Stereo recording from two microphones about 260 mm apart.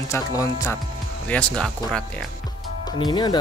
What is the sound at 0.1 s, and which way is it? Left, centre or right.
Speech, centre.